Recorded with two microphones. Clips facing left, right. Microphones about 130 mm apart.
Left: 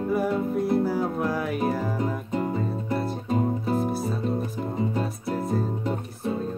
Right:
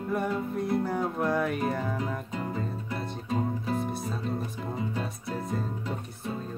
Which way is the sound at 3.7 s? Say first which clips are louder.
Left 5 dB; centre (ahead or behind).